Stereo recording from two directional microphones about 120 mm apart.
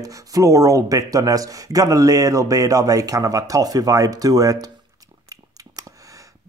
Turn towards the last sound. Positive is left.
turn(degrees=-30)  # may be behind; listen again after turning